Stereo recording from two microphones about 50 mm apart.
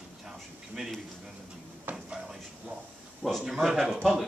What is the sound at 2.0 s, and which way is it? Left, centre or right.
Speech, centre.